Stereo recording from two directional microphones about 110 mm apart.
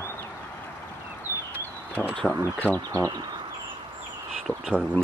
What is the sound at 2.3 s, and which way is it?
Speech, 10° left (ahead or behind).